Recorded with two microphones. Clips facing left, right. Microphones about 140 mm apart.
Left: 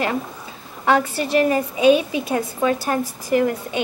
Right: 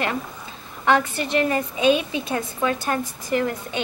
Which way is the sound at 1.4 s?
15° left (ahead or behind).